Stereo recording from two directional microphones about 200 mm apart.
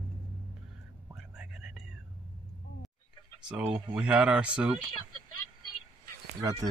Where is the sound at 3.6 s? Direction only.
5° right (ahead or behind).